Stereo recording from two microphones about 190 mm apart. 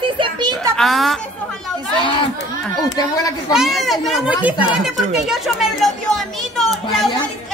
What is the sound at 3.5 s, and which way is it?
Speech, centre (ahead or behind).